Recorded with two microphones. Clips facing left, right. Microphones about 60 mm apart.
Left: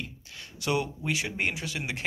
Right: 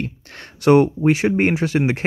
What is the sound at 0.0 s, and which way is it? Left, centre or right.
Speech, right.